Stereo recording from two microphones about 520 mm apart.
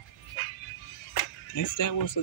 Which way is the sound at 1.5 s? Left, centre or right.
Left.